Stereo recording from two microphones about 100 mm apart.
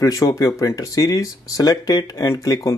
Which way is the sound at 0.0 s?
35° left (ahead or behind).